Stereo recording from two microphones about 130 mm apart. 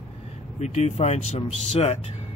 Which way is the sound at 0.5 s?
60° left (ahead or behind).